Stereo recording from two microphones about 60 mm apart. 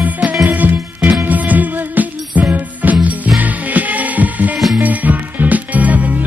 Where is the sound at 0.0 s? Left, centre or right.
Right.